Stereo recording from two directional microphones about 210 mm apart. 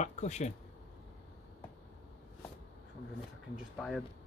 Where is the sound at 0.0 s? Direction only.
35° left (ahead or behind).